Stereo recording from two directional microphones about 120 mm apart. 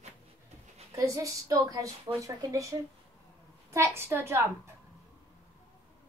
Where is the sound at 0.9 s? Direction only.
25° right (ahead or behind).